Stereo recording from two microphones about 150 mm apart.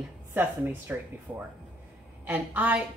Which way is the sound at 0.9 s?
10° right (ahead or behind).